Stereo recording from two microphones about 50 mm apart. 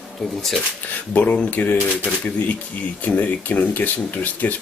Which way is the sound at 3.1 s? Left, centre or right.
Left.